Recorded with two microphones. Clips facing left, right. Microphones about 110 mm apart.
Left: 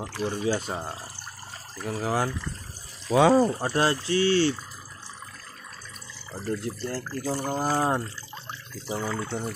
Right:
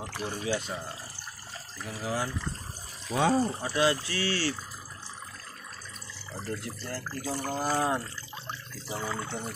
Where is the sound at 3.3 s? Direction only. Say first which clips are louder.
Left 6 dB; 90° left.